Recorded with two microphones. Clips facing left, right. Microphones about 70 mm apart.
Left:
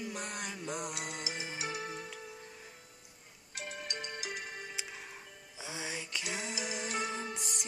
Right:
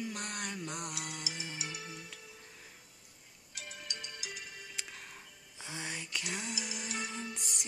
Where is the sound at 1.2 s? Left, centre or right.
Left.